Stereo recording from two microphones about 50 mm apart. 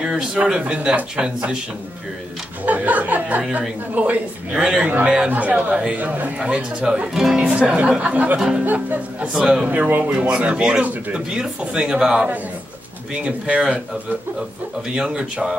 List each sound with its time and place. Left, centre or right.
0.0 s speech: centre
2.6 s speech: right
5.3 s speech: right; by 8.6 s centre
8.6 s speech: right
10.0 s speech: centre
10.6 s speech: centre
14.9 s speech: centre